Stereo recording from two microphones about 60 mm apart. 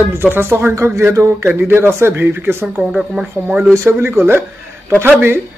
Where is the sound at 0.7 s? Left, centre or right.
Right.